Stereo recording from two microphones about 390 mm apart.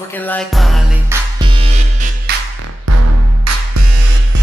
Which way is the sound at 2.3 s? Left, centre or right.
Right.